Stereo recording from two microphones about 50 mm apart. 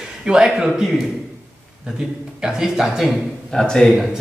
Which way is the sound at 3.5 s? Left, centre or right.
Centre.